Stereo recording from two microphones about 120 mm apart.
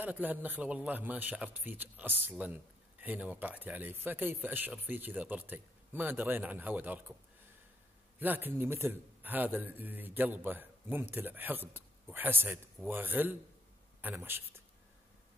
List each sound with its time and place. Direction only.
0.0 s a man's voice: 15° right (ahead or behind)
8.2 s a man's voice: 15° right (ahead or behind)